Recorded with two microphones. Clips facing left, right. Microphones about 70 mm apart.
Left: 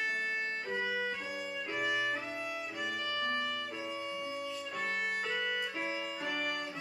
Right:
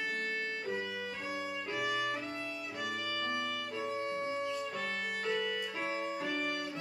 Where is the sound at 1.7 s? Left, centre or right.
Centre.